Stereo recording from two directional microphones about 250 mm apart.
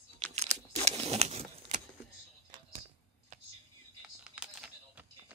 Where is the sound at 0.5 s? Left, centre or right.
Right.